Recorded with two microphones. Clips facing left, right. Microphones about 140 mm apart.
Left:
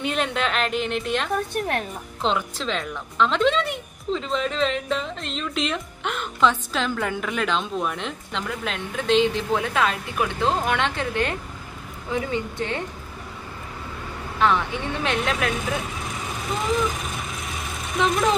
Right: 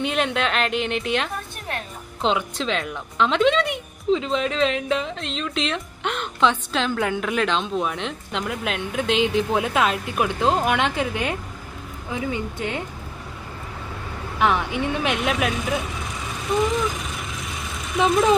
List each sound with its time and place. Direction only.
0.0 s speech: centre (ahead or behind)
1.5 s a woman's voice: 55° left (ahead or behind)
2.2 s speech: centre (ahead or behind)
14.4 s speech: 15° right (ahead or behind)